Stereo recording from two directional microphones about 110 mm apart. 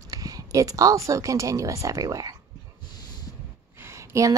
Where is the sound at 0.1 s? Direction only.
35° right (ahead or behind).